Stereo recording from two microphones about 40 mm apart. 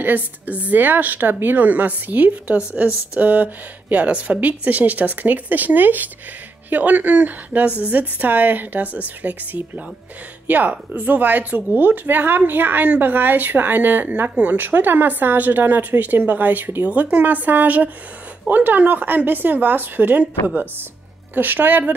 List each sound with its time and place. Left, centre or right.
0.0 s speech: right
2.5 s speech: right
14.3 s a woman's voice: right